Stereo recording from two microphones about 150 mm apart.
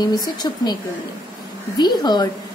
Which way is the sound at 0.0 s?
25° left (ahead or behind).